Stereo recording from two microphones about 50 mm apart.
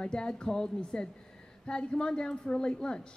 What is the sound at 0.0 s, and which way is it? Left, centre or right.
A woman's voice, centre.